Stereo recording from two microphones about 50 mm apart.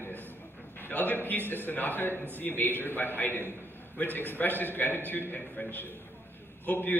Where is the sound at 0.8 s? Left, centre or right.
Left.